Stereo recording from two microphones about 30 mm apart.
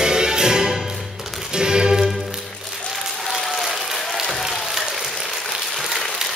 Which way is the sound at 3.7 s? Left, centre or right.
Centre.